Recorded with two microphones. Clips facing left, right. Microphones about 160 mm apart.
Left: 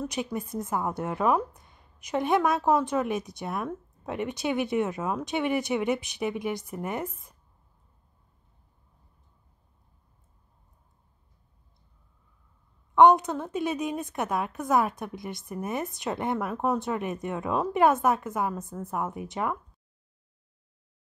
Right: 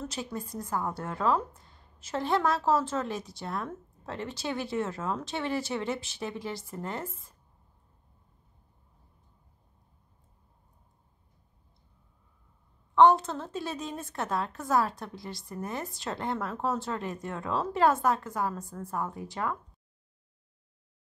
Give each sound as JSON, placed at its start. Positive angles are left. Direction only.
{"t": 0.0, "sound": "a woman's voice", "side_deg": 15}
{"t": 12.9, "sound": "a woman's voice", "side_deg": 20}